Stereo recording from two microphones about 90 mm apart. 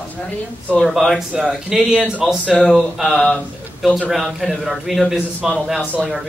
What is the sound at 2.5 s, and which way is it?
Speech, 10° left (ahead or behind).